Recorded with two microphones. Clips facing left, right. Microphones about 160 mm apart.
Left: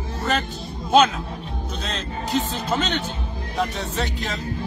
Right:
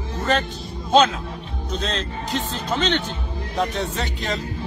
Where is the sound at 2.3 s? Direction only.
5° left (ahead or behind).